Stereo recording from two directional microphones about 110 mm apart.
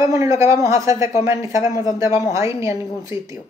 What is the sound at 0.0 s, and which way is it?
Speech, 25° right (ahead or behind).